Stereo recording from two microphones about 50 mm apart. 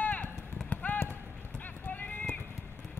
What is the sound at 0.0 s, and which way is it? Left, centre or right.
Clip-clop, left.